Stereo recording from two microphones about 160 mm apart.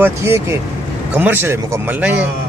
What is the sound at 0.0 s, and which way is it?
Speech, 15° right (ahead or behind).